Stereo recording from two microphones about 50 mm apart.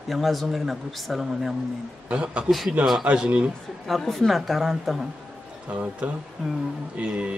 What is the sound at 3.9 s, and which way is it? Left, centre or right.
A woman's voice, centre.